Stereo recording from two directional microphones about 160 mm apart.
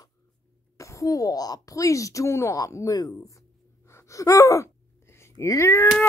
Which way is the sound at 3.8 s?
20° left (ahead or behind).